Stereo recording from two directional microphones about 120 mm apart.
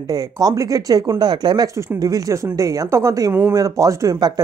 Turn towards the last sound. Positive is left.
turn(degrees=-30)  # may be behind; listen again after turning